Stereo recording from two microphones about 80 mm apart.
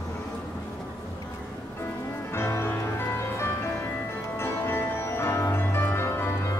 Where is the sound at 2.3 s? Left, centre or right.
Left.